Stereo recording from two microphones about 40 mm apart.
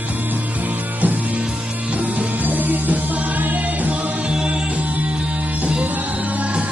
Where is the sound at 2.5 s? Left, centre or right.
Right.